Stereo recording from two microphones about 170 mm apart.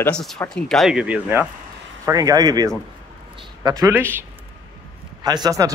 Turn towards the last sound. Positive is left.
turn(degrees=-20)  # may be behind; listen again after turning